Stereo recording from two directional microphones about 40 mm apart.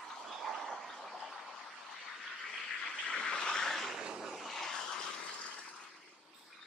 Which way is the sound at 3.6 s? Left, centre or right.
Centre.